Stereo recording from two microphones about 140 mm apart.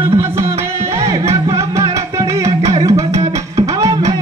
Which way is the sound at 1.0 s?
20° right (ahead or behind).